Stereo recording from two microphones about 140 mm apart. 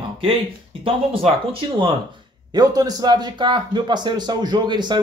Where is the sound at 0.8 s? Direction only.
40° right (ahead or behind).